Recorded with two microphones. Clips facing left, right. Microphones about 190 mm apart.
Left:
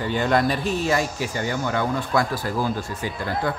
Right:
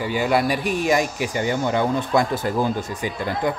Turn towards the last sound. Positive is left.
turn(degrees=-15)  # may be behind; listen again after turning